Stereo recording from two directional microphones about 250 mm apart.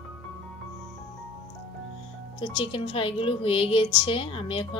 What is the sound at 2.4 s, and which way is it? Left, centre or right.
Speech, centre.